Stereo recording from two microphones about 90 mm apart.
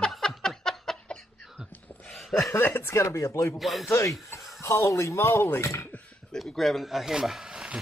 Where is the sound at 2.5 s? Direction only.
25° left (ahead or behind).